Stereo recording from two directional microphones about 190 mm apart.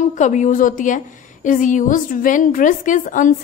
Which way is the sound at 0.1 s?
40° left (ahead or behind).